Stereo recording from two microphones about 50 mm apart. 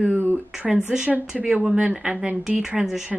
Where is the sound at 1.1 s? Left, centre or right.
Right.